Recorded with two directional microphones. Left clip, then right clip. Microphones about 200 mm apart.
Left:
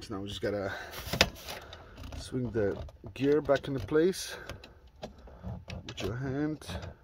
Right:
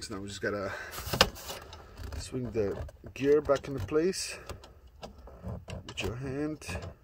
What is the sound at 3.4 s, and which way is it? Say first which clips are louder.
Speech: even; 30° left (ahead or behind).